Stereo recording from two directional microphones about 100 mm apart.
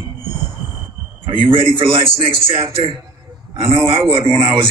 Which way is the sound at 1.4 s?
65° right (ahead or behind).